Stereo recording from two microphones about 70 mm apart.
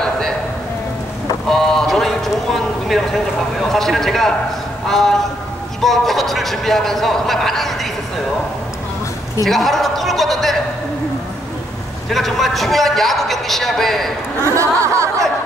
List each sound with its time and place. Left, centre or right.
1.5 s clip-clop: centre
3.7 s a man's voice: centre
9.4 s a man's voice: centre
12.1 s a man's voice: centre
14.4 s a sound: right